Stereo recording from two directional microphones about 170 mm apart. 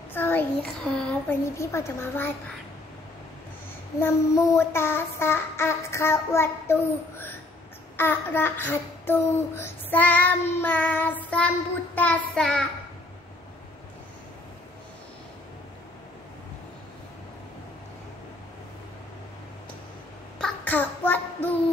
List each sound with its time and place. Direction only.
0.1 s a child's voice: 10° left (ahead or behind)
1.4 s a child's voice: 15° left (ahead or behind)
4.0 s a child's voice: 15° left (ahead or behind)
20.3 s child singing: 5° left (ahead or behind)